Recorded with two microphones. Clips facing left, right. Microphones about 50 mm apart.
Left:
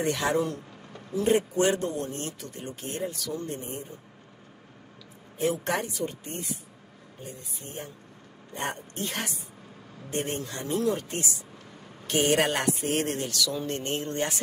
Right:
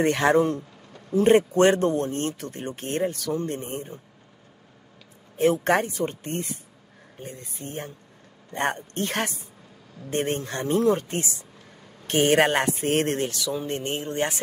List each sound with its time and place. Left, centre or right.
0.0 s speech: right
5.4 s speech: right
13.6 s a sound: right